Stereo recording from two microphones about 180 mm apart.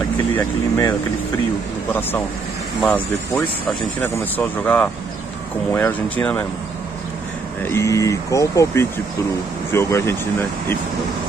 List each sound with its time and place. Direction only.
0.4 s speech: 15° left (ahead or behind)
7.6 s speech: 15° left (ahead or behind)